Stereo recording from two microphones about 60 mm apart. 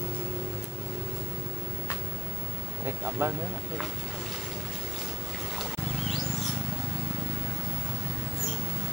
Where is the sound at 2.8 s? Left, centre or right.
Right.